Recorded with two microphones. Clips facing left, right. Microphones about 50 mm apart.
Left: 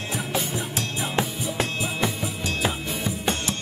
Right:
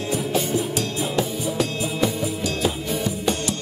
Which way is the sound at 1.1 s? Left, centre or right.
Left.